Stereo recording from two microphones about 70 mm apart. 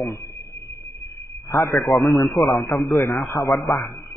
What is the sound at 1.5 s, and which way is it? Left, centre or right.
Speech, left.